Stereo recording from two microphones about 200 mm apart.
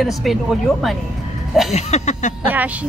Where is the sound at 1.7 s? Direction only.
35° left (ahead or behind).